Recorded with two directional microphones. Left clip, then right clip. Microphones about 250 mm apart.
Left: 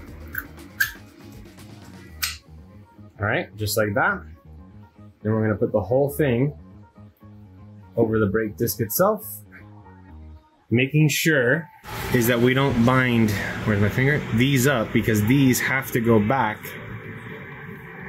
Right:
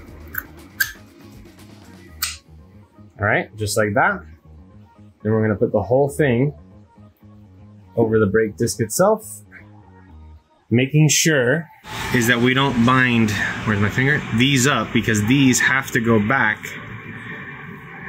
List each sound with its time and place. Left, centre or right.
0.6 s dog: centre
3.2 s speech: right
5.2 s speech: right
7.9 s speech: right
10.7 s speech: right
12.1 s speech: centre